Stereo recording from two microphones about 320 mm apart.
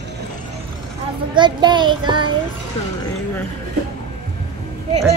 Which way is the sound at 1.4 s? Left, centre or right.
Centre.